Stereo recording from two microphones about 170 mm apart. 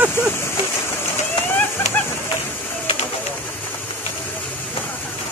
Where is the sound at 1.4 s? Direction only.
10° left (ahead or behind).